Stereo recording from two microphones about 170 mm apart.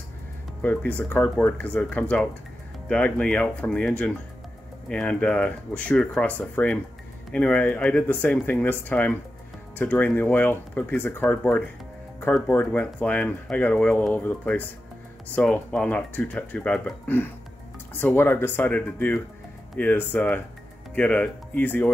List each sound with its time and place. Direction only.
0.6 s speech: 10° left (ahead or behind)